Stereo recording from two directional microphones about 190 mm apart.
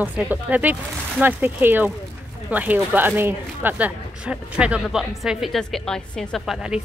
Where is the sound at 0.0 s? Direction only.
10° right (ahead or behind).